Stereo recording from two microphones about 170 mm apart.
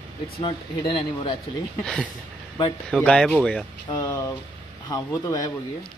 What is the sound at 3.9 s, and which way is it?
Speech, 20° left (ahead or behind).